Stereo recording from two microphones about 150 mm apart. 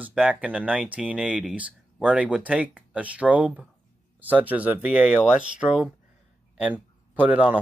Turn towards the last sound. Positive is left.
turn(degrees=-10)  # may be behind; listen again after turning